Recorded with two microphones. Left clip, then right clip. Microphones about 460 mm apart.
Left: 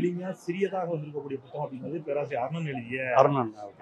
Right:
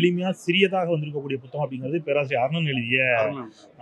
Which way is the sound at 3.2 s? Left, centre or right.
Left.